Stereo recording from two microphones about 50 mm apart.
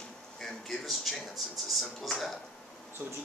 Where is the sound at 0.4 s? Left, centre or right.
Centre.